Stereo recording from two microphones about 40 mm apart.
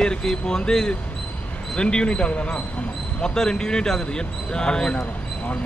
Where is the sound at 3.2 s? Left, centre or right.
Centre.